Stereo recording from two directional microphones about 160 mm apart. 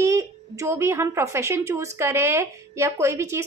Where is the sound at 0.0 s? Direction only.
20° right (ahead or behind).